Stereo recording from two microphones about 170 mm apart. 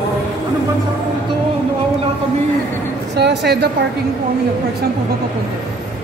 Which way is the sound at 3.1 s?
80° right.